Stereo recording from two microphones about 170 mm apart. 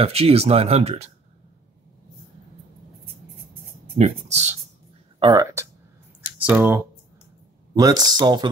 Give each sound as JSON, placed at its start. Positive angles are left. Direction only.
{"t": 0.0, "sound": "speech", "side_deg": -35}
{"t": 4.0, "sound": "speech", "side_deg": -40}
{"t": 5.2, "sound": "speech", "side_deg": -20}
{"t": 7.7, "sound": "speech", "side_deg": -25}